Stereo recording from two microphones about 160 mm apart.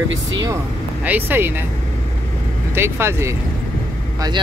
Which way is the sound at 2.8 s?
15° right (ahead or behind).